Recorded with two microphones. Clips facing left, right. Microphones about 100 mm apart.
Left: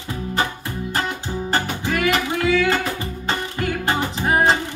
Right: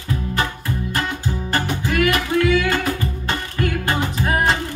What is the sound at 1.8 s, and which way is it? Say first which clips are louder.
Music: right 2 dB; 25° left (ahead or behind).